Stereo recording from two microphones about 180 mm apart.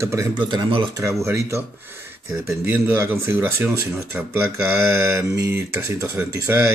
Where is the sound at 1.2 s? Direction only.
15° right (ahead or behind).